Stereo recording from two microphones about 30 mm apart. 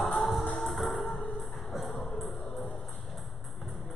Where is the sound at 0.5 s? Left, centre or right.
Centre.